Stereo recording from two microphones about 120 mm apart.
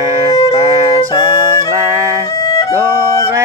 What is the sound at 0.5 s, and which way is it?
Music, 30° right (ahead or behind).